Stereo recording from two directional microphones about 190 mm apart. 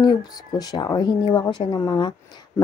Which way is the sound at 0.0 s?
20° left (ahead or behind).